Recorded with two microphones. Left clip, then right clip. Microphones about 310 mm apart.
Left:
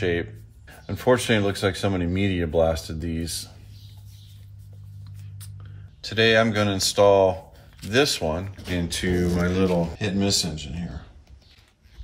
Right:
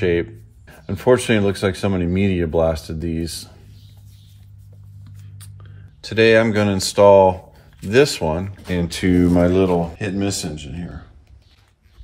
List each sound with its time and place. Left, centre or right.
0.0 s speech: right
5.4 s speech: centre
9.6 s speech: centre